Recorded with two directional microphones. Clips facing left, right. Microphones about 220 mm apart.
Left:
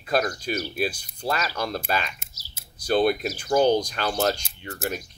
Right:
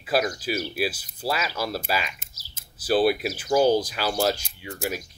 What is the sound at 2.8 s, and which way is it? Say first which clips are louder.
Speech: even; 5° right (ahead or behind).